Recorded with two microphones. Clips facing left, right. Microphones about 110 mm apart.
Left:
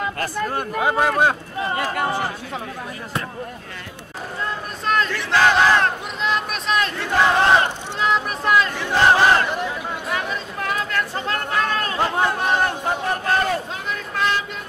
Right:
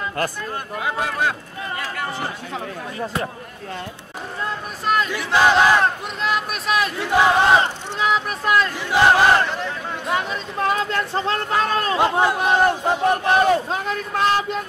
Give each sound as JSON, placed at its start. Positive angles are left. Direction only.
{"t": 0.7, "sound": "speech", "side_deg": 40}
{"t": 1.2, "sound": "a sound", "side_deg": 35}
{"t": 4.8, "sound": "battle cry", "side_deg": -5}
{"t": 10.1, "sound": "speech", "side_deg": -25}
{"t": 12.0, "sound": "battle cry", "side_deg": -10}
{"t": 13.7, "sound": "speech", "side_deg": -40}